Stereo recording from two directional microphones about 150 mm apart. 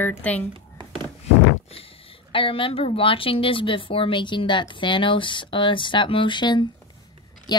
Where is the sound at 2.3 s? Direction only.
35° left (ahead or behind).